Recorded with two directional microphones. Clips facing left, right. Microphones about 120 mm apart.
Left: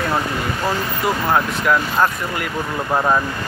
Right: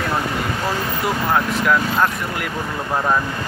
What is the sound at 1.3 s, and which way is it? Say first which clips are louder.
Speech: even; 5° left (ahead or behind).